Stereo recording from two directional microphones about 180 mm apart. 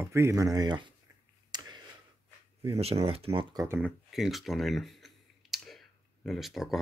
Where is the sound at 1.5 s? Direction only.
25° right (ahead or behind).